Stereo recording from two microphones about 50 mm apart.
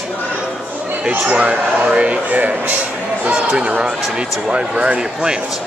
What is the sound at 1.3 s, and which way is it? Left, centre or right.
Speech, right.